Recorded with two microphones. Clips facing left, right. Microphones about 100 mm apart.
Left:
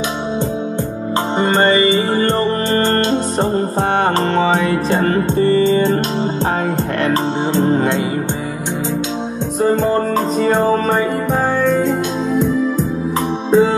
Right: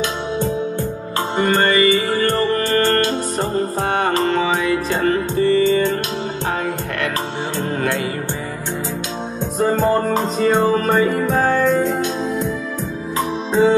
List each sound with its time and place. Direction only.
1.4 s music: 25° left (ahead or behind)
7.1 s music: 25° left (ahead or behind)